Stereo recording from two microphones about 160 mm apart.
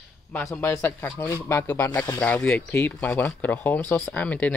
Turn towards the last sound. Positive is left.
turn(degrees=10)  # may be behind; listen again after turning